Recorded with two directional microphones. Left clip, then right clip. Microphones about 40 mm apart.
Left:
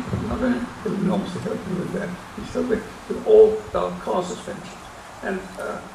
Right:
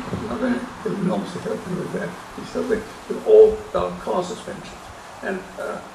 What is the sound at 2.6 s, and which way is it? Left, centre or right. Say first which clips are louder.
Speech: even; right.